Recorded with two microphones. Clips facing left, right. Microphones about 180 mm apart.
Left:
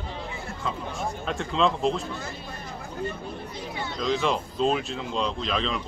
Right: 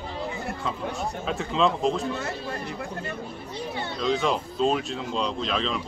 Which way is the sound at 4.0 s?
Centre (ahead or behind).